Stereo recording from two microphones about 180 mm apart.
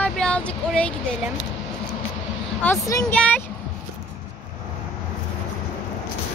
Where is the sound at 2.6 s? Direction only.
15° left (ahead or behind).